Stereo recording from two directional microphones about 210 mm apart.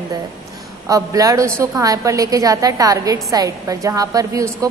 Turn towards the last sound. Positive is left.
turn(degrees=-15)  # may be behind; listen again after turning